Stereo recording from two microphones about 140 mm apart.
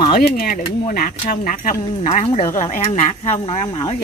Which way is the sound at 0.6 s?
80° left.